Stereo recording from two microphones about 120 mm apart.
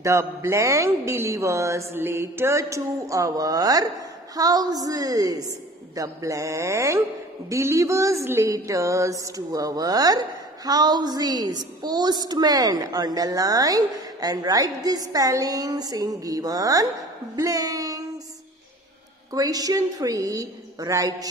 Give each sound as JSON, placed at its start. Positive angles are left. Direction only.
{"t": 0.0, "sound": "speech", "side_deg": -25}
{"t": 4.4, "sound": "a sound", "side_deg": -30}
{"t": 5.9, "sound": "speech", "side_deg": -25}
{"t": 7.4, "sound": "a sound", "side_deg": -25}
{"t": 17.4, "sound": "speech", "side_deg": -30}
{"t": 19.3, "sound": "speech", "side_deg": -30}